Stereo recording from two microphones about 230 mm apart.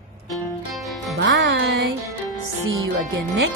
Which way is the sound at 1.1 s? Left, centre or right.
Right.